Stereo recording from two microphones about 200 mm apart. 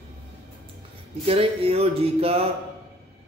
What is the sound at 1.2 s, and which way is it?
Music, 30° right (ahead or behind).